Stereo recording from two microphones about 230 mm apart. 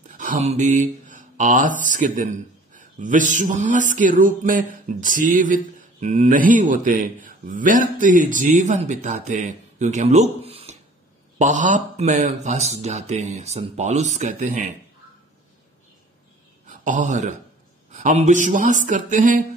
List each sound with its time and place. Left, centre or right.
0.1 s a man's voice: right
16.6 s a man's voice: right